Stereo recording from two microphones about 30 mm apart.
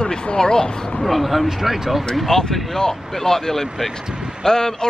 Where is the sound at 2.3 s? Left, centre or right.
Left.